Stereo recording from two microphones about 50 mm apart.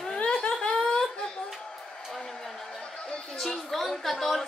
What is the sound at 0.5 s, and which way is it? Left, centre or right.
Laughter, centre.